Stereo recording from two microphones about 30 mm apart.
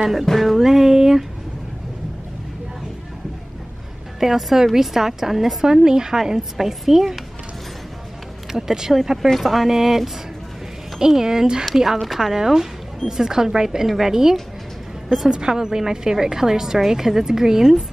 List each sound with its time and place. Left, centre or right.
0.0 s speech: centre
0.6 s music: centre
4.2 s a woman's voice: centre
5.6 s a woman's voice: right
8.5 s a woman's voice: centre
9.4 s speech: centre
9.7 s a woman's voice: centre
13.8 s a woman's voice: centre
15.2 s a woman's voice: right